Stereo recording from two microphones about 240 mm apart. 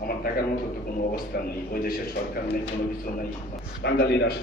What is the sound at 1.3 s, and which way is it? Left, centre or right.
Speech, left.